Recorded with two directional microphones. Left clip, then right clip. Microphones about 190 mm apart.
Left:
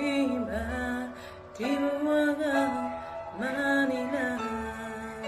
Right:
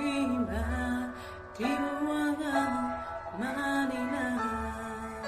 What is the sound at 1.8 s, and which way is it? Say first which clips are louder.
Music: left 5 dB; 30° right (ahead or behind).